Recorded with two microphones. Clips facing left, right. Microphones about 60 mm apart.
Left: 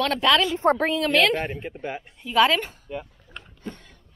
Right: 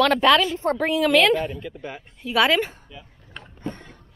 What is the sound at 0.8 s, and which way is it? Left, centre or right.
Speech, centre.